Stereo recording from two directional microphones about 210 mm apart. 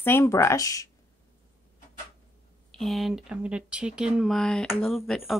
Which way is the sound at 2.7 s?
Centre (ahead or behind).